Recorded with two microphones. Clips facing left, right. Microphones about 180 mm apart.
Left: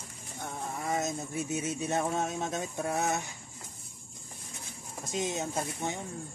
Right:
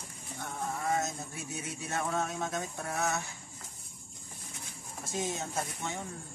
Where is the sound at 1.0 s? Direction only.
20° left (ahead or behind).